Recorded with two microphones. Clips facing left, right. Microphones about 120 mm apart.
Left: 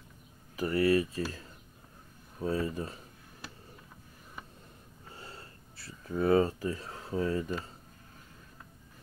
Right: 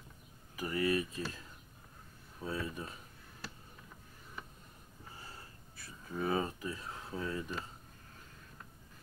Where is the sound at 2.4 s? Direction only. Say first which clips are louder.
Left 7 dB; 40° left (ahead or behind).